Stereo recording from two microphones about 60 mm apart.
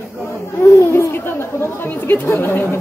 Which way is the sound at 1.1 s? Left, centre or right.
Left.